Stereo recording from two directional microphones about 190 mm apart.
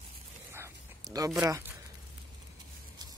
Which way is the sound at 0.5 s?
15° right (ahead or behind).